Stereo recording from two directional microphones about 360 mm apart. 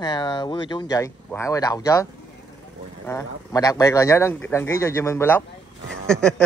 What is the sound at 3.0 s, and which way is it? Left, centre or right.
Speech, centre.